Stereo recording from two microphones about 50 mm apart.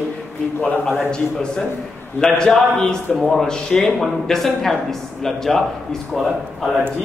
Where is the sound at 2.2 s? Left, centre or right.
Left; by 5.6 s centre.